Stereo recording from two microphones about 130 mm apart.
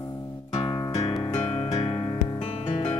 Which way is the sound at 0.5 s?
40° left (ahead or behind).